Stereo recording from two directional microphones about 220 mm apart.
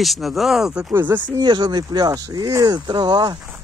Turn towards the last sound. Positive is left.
turn(degrees=-20)  # may be behind; listen again after turning